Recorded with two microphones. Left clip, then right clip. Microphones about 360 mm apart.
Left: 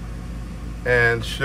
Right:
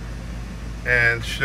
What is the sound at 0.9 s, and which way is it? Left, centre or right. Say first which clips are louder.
Speech: even; centre.